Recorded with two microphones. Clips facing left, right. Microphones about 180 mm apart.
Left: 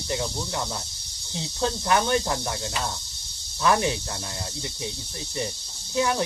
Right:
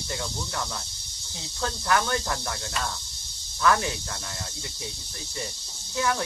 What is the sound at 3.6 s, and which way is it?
Speech, 20° left (ahead or behind).